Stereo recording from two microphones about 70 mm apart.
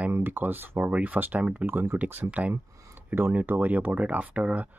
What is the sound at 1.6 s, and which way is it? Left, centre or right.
Speech, right.